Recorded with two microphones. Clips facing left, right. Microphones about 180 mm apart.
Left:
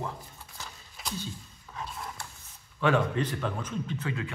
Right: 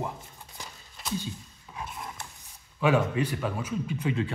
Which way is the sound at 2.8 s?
10° right (ahead or behind).